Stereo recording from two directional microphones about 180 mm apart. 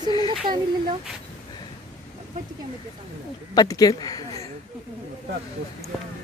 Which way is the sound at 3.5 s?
20° left (ahead or behind).